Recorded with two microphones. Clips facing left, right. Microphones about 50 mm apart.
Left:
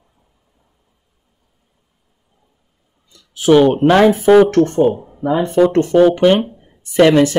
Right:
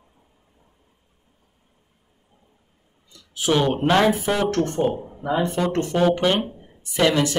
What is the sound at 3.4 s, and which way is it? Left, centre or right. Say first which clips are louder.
Speech: left 10 dB; left.